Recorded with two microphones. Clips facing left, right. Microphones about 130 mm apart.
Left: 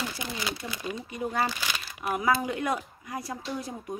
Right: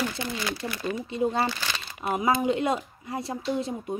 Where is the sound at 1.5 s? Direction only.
10° left (ahead or behind).